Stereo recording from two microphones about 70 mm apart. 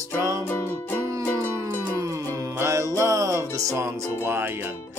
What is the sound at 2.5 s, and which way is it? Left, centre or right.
Music, right.